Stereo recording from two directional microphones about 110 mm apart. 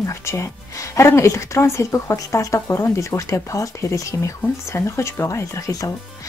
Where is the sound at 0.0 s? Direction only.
25° left (ahead or behind).